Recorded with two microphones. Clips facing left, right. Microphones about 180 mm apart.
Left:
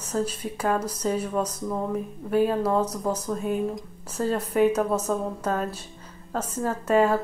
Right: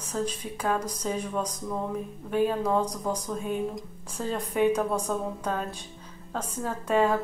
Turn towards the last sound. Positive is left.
turn(degrees=10)  # may be behind; listen again after turning